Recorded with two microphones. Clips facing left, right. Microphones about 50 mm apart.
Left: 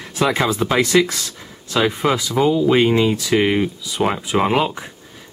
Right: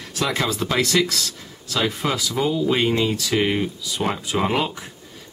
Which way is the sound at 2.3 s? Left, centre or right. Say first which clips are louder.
Left 6 dB; centre.